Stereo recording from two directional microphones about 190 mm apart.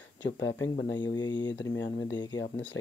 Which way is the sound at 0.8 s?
20° left (ahead or behind).